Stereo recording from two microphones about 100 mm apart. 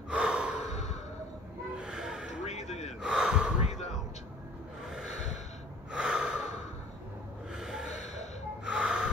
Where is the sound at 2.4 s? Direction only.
90° left.